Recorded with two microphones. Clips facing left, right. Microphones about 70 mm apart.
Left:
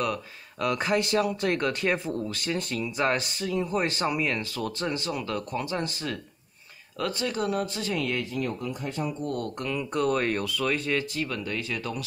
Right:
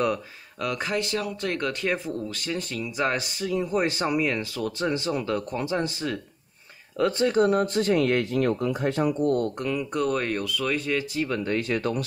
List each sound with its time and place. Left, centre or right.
0.6 s speech: centre; by 8.3 s right
8.3 s speech: right
9.6 s speech: centre
11.1 s speech: right
11.5 s speech: right